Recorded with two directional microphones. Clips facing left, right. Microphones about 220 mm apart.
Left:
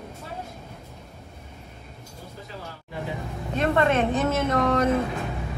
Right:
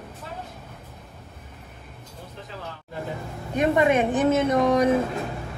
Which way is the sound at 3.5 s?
15° right (ahead or behind).